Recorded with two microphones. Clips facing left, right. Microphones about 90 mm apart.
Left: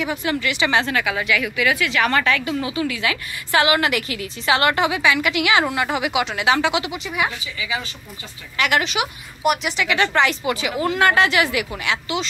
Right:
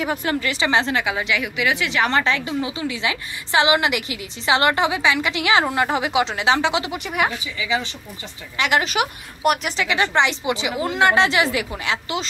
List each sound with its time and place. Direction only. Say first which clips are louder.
0.0 s a woman's voice: even; 40° right (ahead or behind)
6.9 s a woman's voice: right 1 dB; 50° right (ahead or behind)
7.2 s a woman's voice: right 3 dB; 25° right (ahead or behind)
8.8 s a woman's voice: right 2 dB; 45° right (ahead or behind)
10.1 s a woman's voice: even; 25° right (ahead or behind)